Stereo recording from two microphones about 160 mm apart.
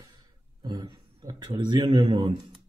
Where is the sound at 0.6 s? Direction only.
30° right (ahead or behind).